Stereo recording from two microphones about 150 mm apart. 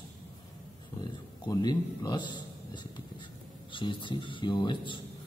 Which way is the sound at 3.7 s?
35° left (ahead or behind).